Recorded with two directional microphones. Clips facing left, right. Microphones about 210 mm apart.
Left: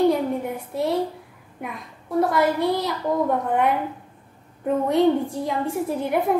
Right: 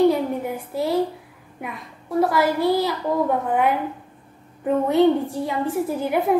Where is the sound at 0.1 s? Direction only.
Centre (ahead or behind).